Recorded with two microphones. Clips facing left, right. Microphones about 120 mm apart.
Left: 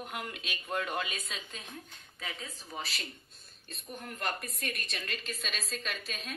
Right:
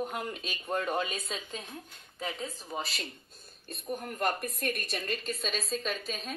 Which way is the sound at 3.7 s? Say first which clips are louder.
Right 7 dB; 45° right (ahead or behind).